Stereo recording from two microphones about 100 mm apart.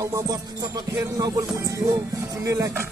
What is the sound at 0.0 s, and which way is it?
Music, 35° right (ahead or behind).